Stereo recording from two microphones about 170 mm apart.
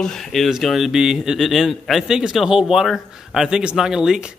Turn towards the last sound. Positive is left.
turn(degrees=-5)  # may be behind; listen again after turning